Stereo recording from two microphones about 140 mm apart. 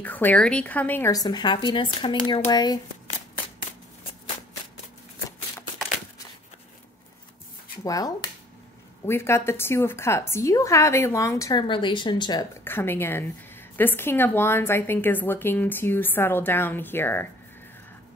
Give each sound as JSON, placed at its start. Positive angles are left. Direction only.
{"t": 0.0, "sound": "a woman's voice", "side_deg": 10}
{"t": 1.1, "sound": "a woman's voice", "side_deg": 30}
{"t": 7.8, "sound": "a woman's voice", "side_deg": 25}
{"t": 11.6, "sound": "speech", "side_deg": 35}
{"t": 12.6, "sound": "a woman's voice", "side_deg": 15}